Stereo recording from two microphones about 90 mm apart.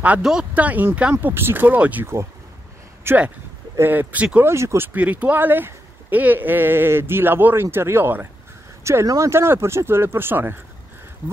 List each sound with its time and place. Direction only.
0.0 s speech: 10° right (ahead or behind)
3.1 s speech: 30° right (ahead or behind)
4.5 s speech: 30° right (ahead or behind)
8.8 s speech: 35° right (ahead or behind)
9.3 s speech: 30° right (ahead or behind)